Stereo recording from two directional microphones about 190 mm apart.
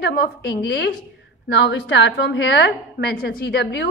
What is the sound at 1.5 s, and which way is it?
A woman's voice, 65° left (ahead or behind).